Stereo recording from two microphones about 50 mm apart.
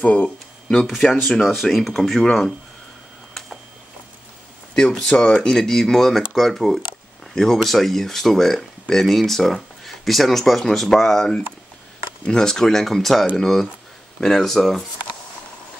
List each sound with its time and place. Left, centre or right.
0.0 s a sound: left
0.7 s speech: centre
4.7 s speech: centre